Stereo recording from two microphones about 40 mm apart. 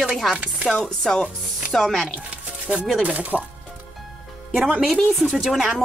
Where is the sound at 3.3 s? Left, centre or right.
Left.